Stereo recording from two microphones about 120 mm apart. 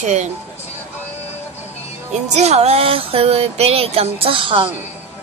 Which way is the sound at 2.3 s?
65° right (ahead or behind).